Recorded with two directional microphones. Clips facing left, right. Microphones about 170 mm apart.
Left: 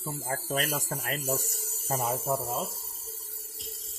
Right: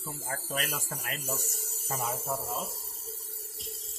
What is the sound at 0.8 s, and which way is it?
Speech, 40° left (ahead or behind).